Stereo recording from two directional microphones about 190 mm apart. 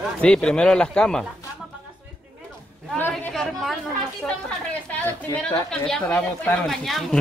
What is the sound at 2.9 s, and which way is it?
Chatter, 5° left (ahead or behind).